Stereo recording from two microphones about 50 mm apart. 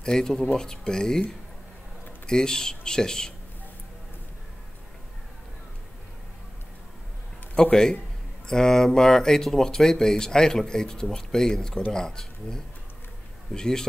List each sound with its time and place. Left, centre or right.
0.0 s speech: centre
2.2 s speech: centre
7.7 s speech: centre